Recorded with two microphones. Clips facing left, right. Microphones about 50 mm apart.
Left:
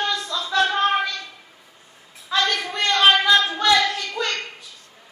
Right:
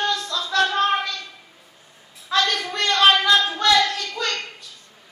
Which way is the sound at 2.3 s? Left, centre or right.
Centre.